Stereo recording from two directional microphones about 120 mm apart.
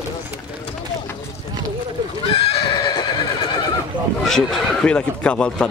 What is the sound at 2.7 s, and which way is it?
Horse, 40° left (ahead or behind).